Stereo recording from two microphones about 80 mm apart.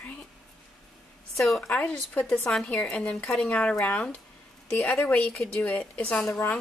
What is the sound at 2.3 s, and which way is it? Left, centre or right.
A woman's voice, centre.